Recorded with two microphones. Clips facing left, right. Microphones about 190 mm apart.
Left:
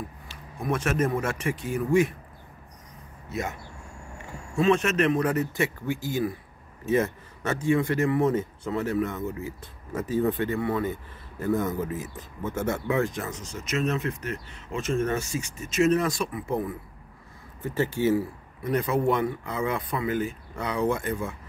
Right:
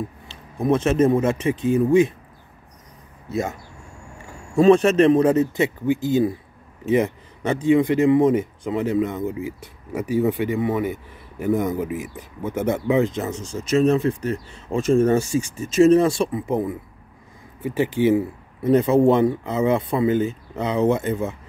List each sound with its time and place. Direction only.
0.3 s speech: 20° right (ahead or behind)
3.3 s speech: 30° right (ahead or behind)
4.6 s speech: 35° right (ahead or behind)